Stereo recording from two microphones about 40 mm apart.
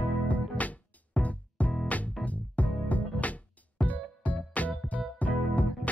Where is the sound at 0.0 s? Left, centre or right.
Left.